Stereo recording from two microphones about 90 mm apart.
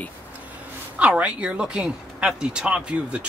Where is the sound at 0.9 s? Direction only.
15° right (ahead or behind).